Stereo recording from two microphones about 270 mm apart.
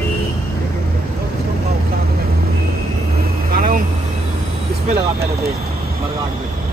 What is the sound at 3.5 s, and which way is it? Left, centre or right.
Vehicle, right.